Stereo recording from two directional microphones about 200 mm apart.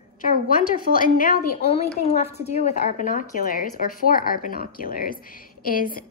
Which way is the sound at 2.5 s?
35° left (ahead or behind).